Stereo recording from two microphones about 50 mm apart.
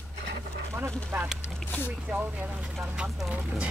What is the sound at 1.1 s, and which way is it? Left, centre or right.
Speech, right.